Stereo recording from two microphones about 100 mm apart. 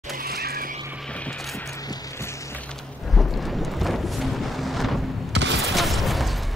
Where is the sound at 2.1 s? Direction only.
30° left (ahead or behind).